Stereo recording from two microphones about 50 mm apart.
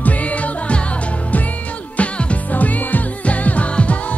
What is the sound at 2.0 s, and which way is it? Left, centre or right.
Music, left.